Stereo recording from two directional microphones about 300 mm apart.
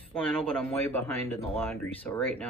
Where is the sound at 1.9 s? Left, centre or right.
Centre.